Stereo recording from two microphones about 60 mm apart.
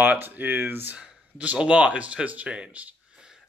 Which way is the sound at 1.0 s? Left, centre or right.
Centre.